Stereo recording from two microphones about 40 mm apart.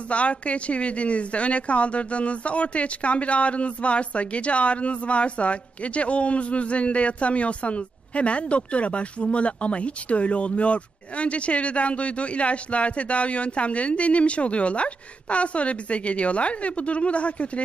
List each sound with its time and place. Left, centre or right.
0.1 s a woman's voice: left